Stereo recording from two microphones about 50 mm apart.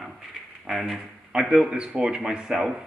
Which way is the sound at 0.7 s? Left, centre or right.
Centre.